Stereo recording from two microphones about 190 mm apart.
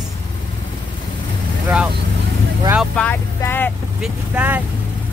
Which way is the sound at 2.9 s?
10° left (ahead or behind).